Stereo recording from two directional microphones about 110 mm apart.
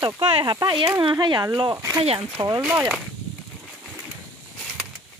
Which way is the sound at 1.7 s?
30° right (ahead or behind).